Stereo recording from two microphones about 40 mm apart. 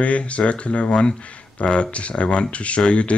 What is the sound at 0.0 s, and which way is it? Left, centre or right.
Speech, left.